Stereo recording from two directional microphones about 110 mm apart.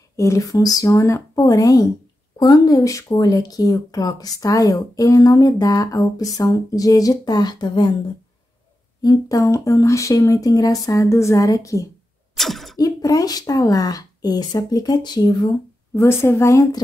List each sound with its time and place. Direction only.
0.1 s speech: 30° left (ahead or behind)
9.0 s speech: 30° left (ahead or behind)
12.4 s a sound: centre (ahead or behind)
12.7 s speech: 35° left (ahead or behind)
15.9 s speech: 25° left (ahead or behind)